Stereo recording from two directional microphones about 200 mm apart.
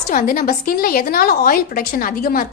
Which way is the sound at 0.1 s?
45° left (ahead or behind).